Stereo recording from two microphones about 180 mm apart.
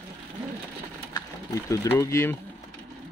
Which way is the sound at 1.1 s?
15° left (ahead or behind).